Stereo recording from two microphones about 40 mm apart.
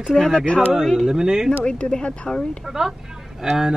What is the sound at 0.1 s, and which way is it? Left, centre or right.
Speech, centre.